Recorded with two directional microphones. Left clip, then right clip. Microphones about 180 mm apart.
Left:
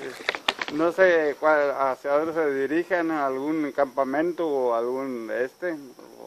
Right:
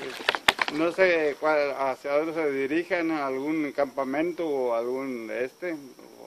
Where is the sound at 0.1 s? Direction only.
40° right (ahead or behind).